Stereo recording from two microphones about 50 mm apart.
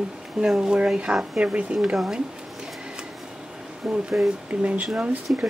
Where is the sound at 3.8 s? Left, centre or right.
Centre.